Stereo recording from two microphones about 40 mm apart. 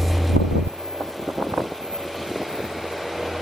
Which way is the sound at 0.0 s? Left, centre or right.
Centre.